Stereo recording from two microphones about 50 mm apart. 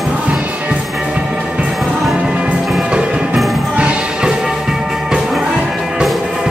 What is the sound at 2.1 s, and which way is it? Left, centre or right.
Music, centre.